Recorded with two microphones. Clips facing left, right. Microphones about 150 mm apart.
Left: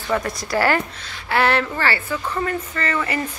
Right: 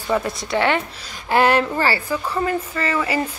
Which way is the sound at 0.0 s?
10° right (ahead or behind).